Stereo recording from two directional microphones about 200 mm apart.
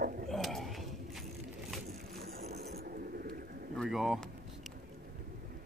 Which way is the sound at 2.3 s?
55° right (ahead or behind).